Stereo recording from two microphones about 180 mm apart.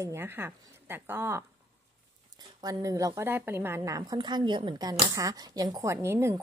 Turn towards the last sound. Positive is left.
turn(degrees=-15)  # may be behind; listen again after turning